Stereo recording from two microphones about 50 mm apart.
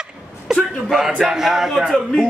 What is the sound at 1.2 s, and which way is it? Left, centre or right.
Speech, centre.